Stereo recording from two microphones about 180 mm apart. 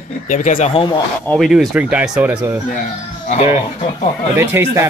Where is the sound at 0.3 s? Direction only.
45° left (ahead or behind).